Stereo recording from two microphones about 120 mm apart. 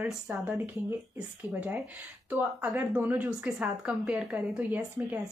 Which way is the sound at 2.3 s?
10° right (ahead or behind).